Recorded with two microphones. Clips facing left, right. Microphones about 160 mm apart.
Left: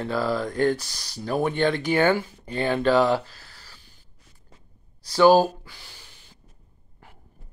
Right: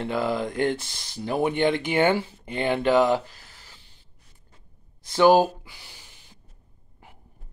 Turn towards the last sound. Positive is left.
turn(degrees=-15)  # may be behind; listen again after turning